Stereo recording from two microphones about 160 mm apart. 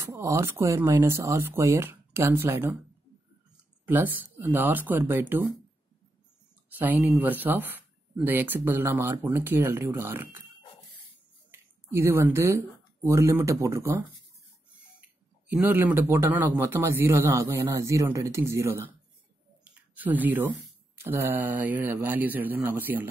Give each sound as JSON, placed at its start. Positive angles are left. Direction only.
{"t": 0.0, "sound": "speech", "side_deg": -20}
{"t": 3.8, "sound": "speech", "side_deg": -10}
{"t": 6.8, "sound": "speech", "side_deg": -10}
{"t": 11.5, "sound": "speech", "side_deg": -15}
{"t": 15.5, "sound": "speech", "side_deg": -10}